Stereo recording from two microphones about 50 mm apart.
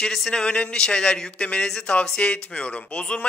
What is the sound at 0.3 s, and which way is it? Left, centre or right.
Speech, left.